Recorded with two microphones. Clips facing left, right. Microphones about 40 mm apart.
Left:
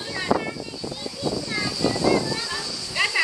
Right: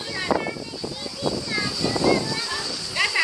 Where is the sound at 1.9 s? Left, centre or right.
Right.